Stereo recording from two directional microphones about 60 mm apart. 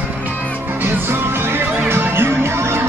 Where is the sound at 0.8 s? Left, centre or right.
Right.